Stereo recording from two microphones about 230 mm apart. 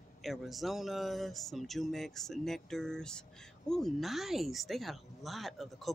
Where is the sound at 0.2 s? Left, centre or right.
Centre.